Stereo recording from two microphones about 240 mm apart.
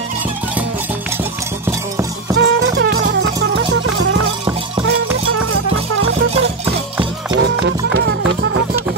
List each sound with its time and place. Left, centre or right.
2.3 s music: right
6.6 s music: centre
7.6 s music: right